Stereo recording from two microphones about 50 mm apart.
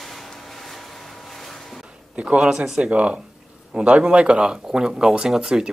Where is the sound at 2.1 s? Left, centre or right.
Right.